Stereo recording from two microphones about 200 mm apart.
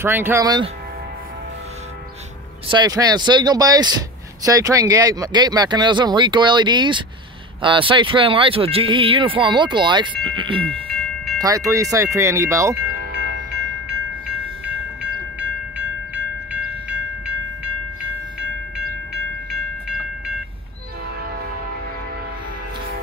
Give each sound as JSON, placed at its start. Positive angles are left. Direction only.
{"t": 0.0, "sound": "speech", "side_deg": -10}
{"t": 2.7, "sound": "speech", "side_deg": -20}
{"t": 10.7, "sound": "train", "side_deg": 5}
{"t": 11.3, "sound": "speech", "side_deg": -15}
{"t": 13.8, "sound": "train", "side_deg": -5}